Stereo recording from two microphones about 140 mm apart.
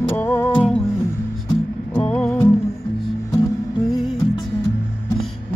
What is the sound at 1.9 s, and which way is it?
Music, 10° left (ahead or behind).